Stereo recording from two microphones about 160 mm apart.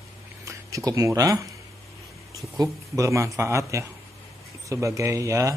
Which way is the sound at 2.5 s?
20° right (ahead or behind).